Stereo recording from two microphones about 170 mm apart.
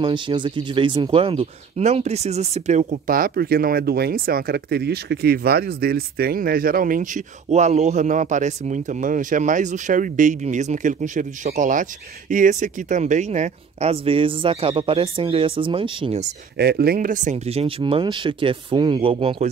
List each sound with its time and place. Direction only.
0.0 s speech: 30° right (ahead or behind)
16.5 s speech: 70° right (ahead or behind); by 19.5 s 35° right (ahead or behind)